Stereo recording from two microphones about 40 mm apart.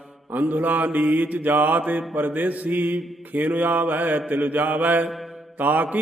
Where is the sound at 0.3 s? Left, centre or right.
Right.